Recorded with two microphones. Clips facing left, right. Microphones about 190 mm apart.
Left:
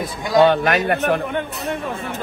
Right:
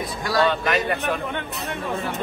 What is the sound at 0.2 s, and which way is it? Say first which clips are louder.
Speech: left 7 dB; 20° left (ahead or behind).